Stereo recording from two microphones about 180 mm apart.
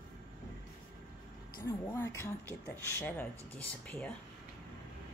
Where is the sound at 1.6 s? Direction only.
15° left (ahead or behind).